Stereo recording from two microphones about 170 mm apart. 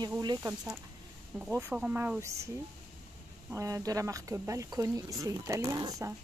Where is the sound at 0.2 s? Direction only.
25° right (ahead or behind).